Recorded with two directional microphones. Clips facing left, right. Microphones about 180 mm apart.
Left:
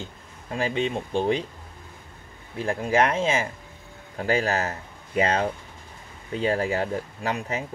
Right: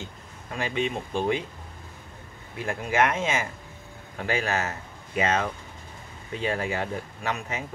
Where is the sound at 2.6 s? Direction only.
35° left (ahead or behind).